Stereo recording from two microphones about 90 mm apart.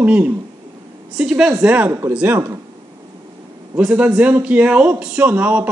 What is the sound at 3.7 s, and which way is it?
A man's voice, 15° right (ahead or behind).